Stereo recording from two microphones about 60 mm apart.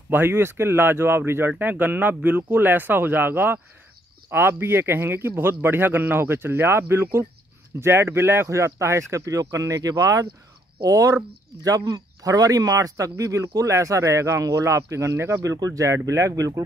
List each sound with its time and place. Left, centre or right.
0.1 s speech: right
8.5 s speech: right
10.8 s speech: right